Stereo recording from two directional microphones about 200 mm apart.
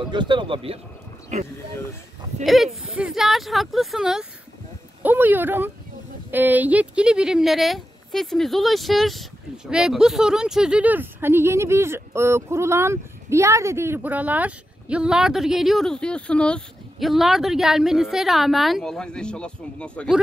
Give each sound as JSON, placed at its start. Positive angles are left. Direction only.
{"t": 0.1, "sound": "speech", "side_deg": -25}
{"t": 2.4, "sound": "speech", "side_deg": 0}